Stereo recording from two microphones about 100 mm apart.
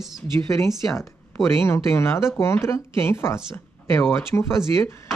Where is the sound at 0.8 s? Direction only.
Centre (ahead or behind).